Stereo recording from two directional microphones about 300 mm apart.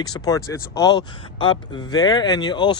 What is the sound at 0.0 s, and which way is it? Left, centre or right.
Speech, centre.